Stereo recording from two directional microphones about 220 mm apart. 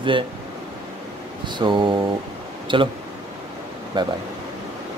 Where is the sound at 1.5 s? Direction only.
20° right (ahead or behind).